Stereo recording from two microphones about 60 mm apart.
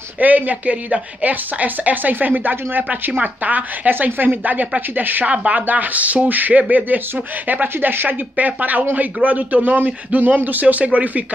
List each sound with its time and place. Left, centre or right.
0.2 s a woman's voice: right
5.2 s a woman's voice: centre